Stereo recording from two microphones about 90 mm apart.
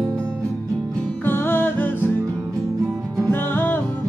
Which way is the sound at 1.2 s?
25° left (ahead or behind).